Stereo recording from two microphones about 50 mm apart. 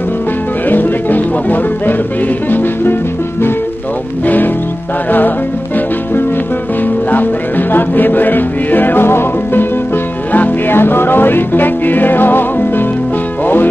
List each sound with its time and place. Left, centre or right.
0.7 s music: left
6.8 s music: left
10.3 s music: left
10.8 s music: left